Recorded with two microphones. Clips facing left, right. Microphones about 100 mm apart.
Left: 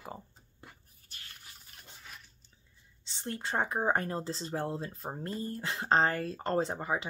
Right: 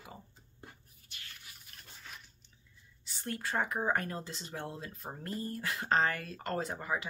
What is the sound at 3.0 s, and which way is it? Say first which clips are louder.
Speech: left 1 dB; 25° left (ahead or behind).